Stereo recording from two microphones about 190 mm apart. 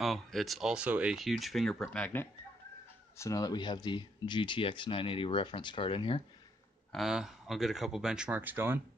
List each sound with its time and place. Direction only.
0.0 s speech: centre (ahead or behind)
3.2 s speech: 20° left (ahead or behind)
6.9 s speech: centre (ahead or behind)